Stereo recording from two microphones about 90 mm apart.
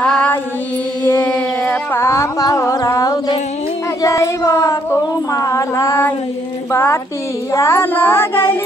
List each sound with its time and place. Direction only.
0.0 s mantra: 15° left (ahead or behind)
1.0 s child singing: 25° left (ahead or behind)
1.3 s a sound: 10° left (ahead or behind)
2.0 s music: 35° left (ahead or behind)
4.0 s a sound: 35° left (ahead or behind)
6.7 s speech: 30° left (ahead or behind)
7.5 s child singing: 30° left (ahead or behind)